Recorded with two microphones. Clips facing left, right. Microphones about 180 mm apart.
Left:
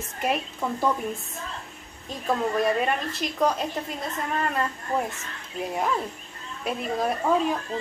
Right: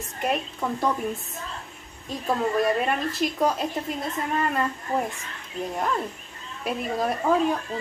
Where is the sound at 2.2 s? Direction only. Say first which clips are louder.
Right 1 dB; centre (ahead or behind).